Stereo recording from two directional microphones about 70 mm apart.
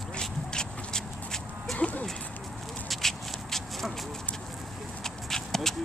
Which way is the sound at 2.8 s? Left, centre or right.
Centre.